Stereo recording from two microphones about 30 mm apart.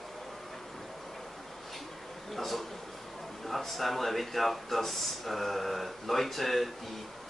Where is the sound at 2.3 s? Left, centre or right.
Centre.